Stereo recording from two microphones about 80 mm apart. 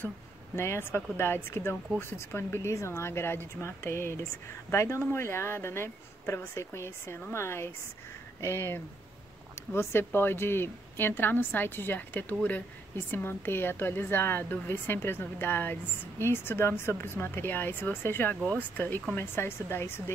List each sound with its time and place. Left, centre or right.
0.6 s a woman's voice: left